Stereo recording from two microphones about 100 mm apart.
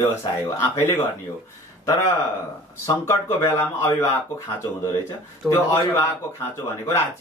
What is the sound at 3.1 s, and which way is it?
Speech, 25° left (ahead or behind).